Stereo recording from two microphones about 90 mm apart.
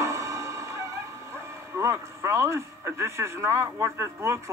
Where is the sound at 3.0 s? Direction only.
30° right (ahead or behind).